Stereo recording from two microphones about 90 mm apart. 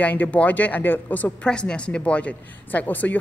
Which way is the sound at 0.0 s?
15° left (ahead or behind).